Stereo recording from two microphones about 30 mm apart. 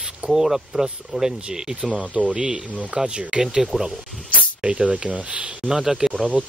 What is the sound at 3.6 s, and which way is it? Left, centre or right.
Speech, centre.